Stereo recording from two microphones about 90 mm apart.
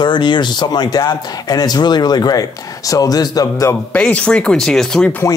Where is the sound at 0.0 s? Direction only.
60° left (ahead or behind).